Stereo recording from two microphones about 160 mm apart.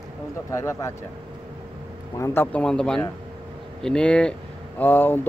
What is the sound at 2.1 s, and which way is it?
Speech, 15° left (ahead or behind).